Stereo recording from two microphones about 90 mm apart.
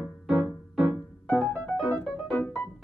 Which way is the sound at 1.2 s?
15° left (ahead or behind).